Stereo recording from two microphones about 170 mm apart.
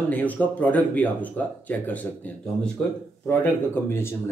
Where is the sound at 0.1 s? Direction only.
10° left (ahead or behind).